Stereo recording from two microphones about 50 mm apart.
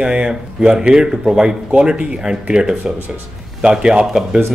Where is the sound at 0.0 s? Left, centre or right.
Centre.